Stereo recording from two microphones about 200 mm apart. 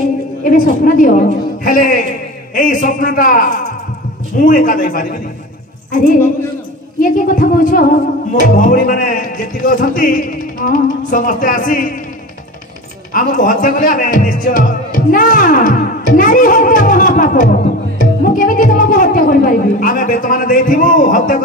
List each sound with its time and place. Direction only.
0.4 s a woman's voice: 45° left (ahead or behind)
13.1 s speech: 45° left (ahead or behind)